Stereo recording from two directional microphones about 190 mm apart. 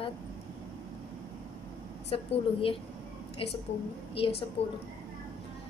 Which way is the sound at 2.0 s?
30° left (ahead or behind).